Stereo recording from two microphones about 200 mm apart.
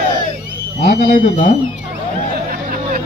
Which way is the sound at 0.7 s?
45° left (ahead or behind).